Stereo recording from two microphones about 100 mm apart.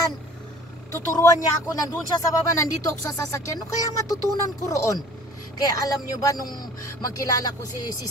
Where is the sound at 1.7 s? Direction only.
35° left (ahead or behind).